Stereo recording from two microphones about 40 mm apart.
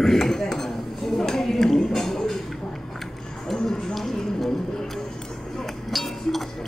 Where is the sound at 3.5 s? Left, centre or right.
Centre.